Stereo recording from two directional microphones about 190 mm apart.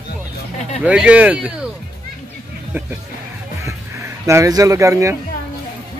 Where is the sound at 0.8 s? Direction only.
5° right (ahead or behind).